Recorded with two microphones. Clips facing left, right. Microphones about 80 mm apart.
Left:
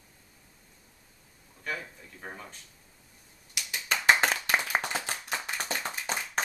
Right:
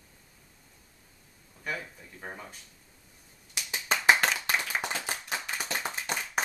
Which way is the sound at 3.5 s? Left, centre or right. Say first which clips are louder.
Right 1 dB; right.